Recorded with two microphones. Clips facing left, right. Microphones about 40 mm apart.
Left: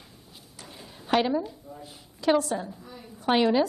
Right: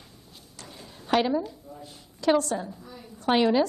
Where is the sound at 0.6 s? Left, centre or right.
Centre.